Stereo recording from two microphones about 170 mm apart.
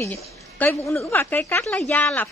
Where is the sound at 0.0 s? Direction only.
10° left (ahead or behind).